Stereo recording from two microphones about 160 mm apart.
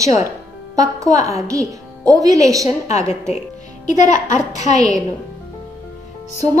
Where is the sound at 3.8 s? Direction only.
50° left (ahead or behind).